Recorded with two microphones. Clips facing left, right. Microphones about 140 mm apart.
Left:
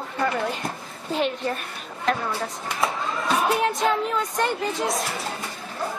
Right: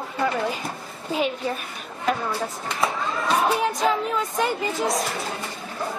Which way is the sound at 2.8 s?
Centre (ahead or behind).